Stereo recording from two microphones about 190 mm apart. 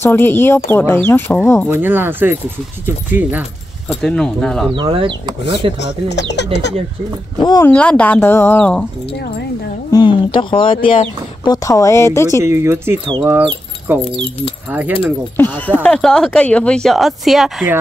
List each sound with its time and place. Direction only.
0.0 s speech: 10° left (ahead or behind)
1.7 s speech: 10° right (ahead or behind)
3.9 s speech: 5° left (ahead or behind)
4.7 s speech: 25° right (ahead or behind)
5.8 s speech: 65° left (ahead or behind)
7.6 s speech: 5° left (ahead or behind)
9.8 s speech: 25° left (ahead or behind)
12.4 s speech: 15° right (ahead or behind)
15.3 s speech: 10° left (ahead or behind)